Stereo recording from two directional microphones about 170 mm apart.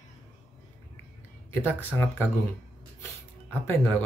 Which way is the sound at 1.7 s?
10° left (ahead or behind).